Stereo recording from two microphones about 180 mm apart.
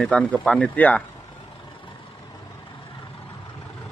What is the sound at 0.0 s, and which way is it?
Speech, 5° left (ahead or behind).